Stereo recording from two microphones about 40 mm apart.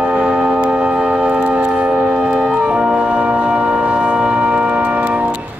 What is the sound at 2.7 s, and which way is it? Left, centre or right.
Music, right.